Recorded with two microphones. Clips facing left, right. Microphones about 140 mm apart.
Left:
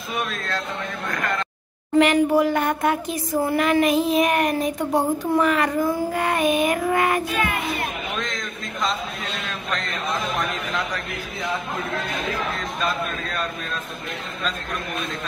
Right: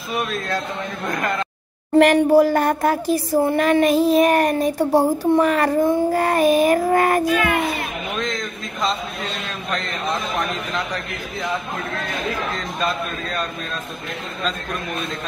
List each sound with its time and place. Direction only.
0.1 s speech: centre (ahead or behind)
2.1 s speech: 35° right (ahead or behind)
6.1 s speech: 35° right (ahead or behind)